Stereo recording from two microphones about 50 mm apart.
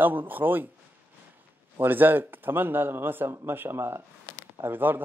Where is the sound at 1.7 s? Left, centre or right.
Right.